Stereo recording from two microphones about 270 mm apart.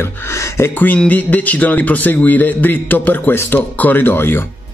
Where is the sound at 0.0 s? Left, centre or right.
Centre.